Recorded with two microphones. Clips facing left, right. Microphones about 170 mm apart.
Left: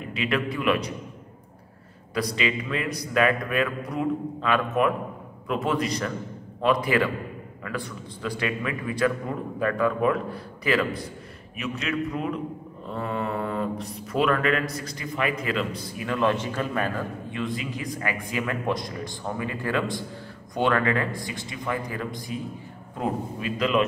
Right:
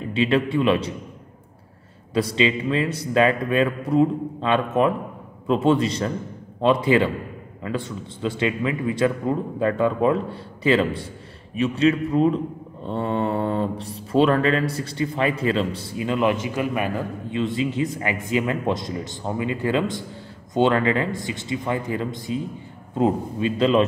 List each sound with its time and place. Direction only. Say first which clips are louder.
0.1 s speech: right 7 dB; 25° right (ahead or behind)
2.1 s speech: right 6 dB; 25° right (ahead or behind)